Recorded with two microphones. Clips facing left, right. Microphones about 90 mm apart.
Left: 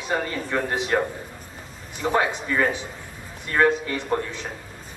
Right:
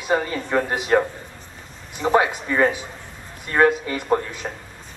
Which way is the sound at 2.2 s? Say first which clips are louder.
Right 3 dB; 10° right (ahead or behind).